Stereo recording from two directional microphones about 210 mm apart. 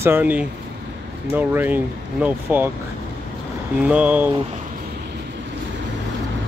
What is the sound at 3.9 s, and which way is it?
Speech, 5° right (ahead or behind).